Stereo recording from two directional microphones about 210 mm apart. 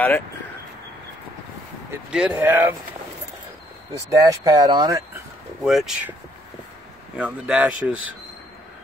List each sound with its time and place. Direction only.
2.0 s speech: 5° right (ahead or behind)
4.1 s speech: 15° right (ahead or behind)
5.6 s speech: centre (ahead or behind)
7.2 s speech: 5° right (ahead or behind)